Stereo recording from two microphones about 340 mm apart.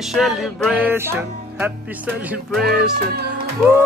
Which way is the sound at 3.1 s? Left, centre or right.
Right.